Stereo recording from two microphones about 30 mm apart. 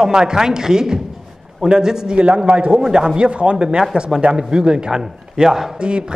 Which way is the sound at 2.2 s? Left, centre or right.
Right.